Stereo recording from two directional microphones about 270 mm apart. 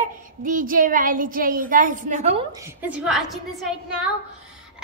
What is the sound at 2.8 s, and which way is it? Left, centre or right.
A woman's voice, centre.